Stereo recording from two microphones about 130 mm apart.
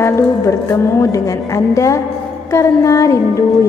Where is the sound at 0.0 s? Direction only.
20° left (ahead or behind).